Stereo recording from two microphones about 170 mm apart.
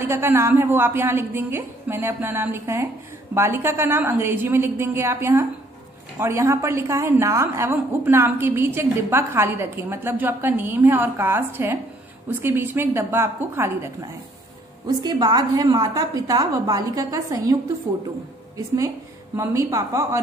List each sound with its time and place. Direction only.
0.0 s a woman's voice: 15° right (ahead or behind)
15.0 s a woman's voice: 25° right (ahead or behind)
19.3 s a woman's voice: 20° right (ahead or behind)